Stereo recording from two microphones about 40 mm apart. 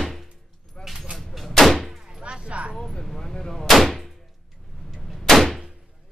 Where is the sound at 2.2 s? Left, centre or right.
Right.